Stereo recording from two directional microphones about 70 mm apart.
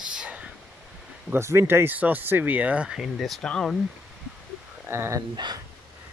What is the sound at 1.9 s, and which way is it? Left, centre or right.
Speech, right.